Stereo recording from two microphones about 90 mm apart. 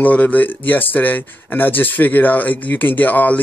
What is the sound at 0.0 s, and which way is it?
Speech, 20° left (ahead or behind).